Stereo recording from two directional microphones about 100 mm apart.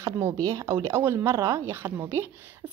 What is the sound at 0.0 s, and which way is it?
A woman's voice, 30° right (ahead or behind).